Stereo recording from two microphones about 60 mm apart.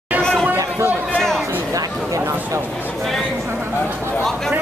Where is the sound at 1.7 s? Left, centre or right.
Right.